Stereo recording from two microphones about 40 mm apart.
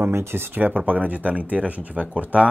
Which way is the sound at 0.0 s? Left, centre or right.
Right.